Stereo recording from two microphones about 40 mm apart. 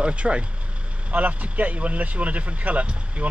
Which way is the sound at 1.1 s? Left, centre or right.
Right.